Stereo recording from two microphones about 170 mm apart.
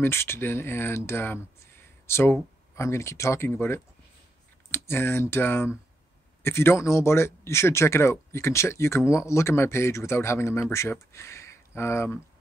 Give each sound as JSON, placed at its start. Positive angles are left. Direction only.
{"t": 0.0, "sound": "speech", "side_deg": 15}